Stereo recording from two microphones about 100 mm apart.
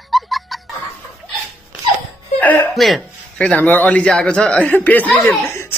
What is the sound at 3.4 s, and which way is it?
Speech, 15° left (ahead or behind).